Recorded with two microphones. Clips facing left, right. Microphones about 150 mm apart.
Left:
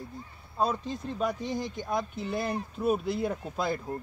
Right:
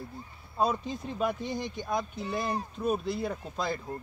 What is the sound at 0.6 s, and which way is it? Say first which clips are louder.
Speech: even; 5° right (ahead or behind).